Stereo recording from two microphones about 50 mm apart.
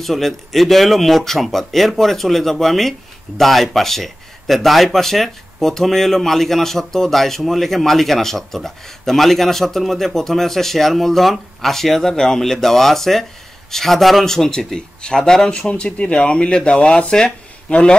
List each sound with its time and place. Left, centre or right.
0.0 s speech: centre